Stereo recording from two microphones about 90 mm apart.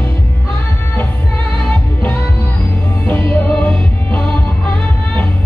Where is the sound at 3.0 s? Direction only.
20° left (ahead or behind).